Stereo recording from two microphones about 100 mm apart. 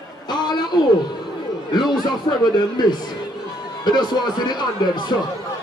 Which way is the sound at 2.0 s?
45° left (ahead or behind).